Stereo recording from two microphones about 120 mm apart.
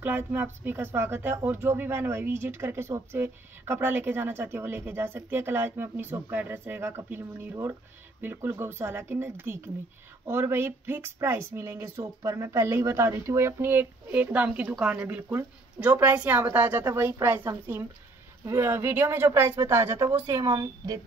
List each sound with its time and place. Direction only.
0.0 s a woman's voice: 15° right (ahead or behind)